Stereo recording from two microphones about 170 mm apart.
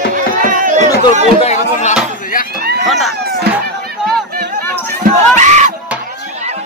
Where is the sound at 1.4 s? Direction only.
45° left (ahead or behind).